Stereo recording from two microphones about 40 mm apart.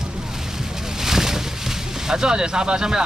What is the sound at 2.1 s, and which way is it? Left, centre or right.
Speech, centre.